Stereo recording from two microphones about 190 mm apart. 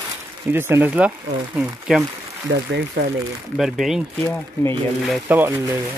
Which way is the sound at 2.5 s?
65° right (ahead or behind).